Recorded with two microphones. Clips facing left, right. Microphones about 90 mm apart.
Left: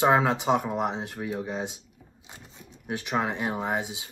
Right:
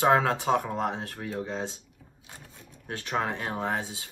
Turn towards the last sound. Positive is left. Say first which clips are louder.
# left 1 dB
turn(degrees=15)  # may be behind; listen again after turning